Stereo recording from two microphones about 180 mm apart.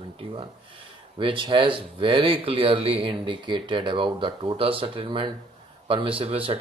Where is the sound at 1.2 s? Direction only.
30° right (ahead or behind).